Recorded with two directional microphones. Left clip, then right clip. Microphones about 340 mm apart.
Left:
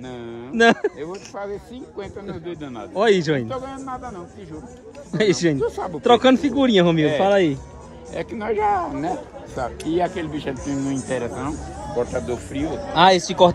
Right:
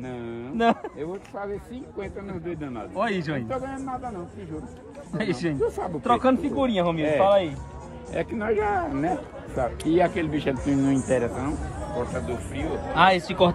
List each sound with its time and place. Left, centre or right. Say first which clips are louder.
0.1 s a sound: left 2 dB; centre
0.6 s speech: left 7 dB; left
1.1 s speech: left 3 dB; centre
2.6 s speech: left 8 dB; centre
5.1 s speech: left 9 dB; centre
6.0 s speech: left 7 dB; left
8.1 s speech: left 1 dB; centre
12.1 s speech: left 5 dB; left